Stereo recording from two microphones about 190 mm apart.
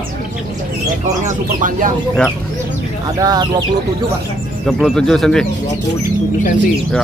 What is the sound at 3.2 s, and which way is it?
Speech, 20° right (ahead or behind).